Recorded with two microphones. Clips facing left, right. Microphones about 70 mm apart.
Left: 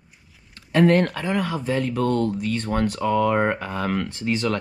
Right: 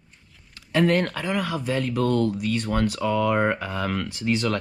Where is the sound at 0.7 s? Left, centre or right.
Left.